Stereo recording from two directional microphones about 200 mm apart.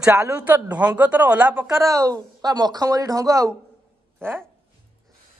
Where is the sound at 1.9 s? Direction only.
15° right (ahead or behind).